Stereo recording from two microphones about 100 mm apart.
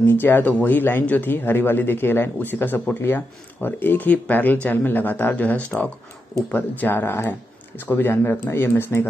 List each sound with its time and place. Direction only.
0.0 s speech: 20° left (ahead or behind)